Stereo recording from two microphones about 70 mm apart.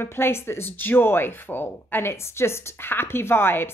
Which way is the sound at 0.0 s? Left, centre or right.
Left.